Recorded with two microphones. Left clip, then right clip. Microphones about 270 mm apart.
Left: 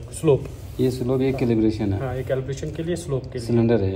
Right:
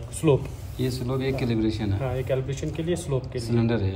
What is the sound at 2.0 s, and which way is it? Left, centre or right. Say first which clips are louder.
A man's voice: left 2 dB; right.